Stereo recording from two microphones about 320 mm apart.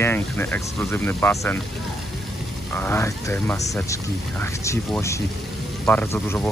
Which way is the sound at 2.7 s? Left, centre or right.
Centre.